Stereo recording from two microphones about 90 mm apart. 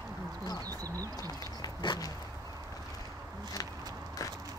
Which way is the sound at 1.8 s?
70° left (ahead or behind).